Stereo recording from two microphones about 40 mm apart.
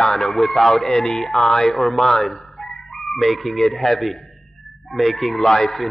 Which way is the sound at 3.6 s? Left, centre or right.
Centre.